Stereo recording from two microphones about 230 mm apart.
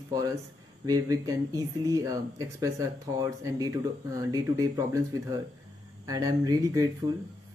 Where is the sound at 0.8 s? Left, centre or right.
Centre.